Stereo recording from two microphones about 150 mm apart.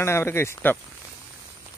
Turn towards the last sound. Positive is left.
turn(degrees=15)  # may be behind; listen again after turning